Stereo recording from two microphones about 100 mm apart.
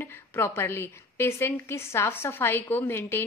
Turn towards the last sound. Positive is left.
turn(degrees=25)  # may be behind; listen again after turning